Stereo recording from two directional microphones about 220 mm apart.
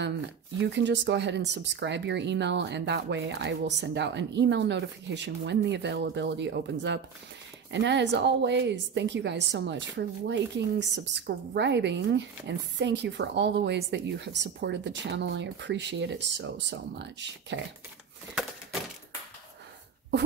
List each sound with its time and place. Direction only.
0.7 s a woman's voice: 55° right (ahead or behind)